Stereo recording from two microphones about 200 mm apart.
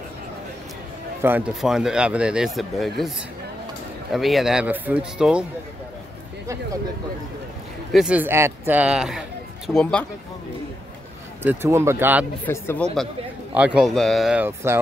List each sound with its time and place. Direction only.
1.2 s speech: 5° right (ahead or behind)
4.1 s speech: centre (ahead or behind)
6.4 s speech: 15° right (ahead or behind)
7.9 s speech: 5° right (ahead or behind)
11.4 s speech: 15° right (ahead or behind)
12.4 s speech: 10° left (ahead or behind)
13.6 s speech: 5° right (ahead or behind)